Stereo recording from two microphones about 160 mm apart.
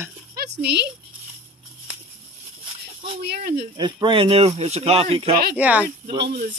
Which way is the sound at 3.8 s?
30° right (ahead or behind).